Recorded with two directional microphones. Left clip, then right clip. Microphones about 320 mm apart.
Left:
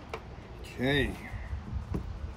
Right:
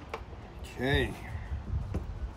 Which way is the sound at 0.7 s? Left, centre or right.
Centre.